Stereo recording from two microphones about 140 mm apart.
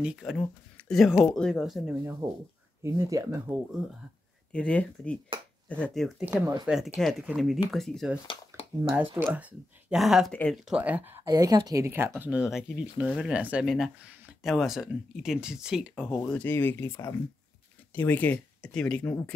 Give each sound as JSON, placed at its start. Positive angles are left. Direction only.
{"t": 0.0, "sound": "speech", "side_deg": 0}
{"t": 2.2, "sound": "speech", "side_deg": -20}
{"t": 4.5, "sound": "speech", "side_deg": 10}
{"t": 6.2, "sound": "speech", "side_deg": -10}
{"t": 6.6, "sound": "speech", "side_deg": 0}
{"t": 9.1, "sound": "speech", "side_deg": -10}
{"t": 10.3, "sound": "speech", "side_deg": 10}
{"t": 10.6, "sound": "speech", "side_deg": -10}
{"t": 16.3, "sound": "speech", "side_deg": 10}